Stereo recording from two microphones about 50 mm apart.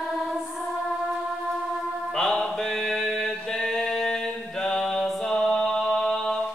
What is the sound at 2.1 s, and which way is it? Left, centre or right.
Mantra, centre.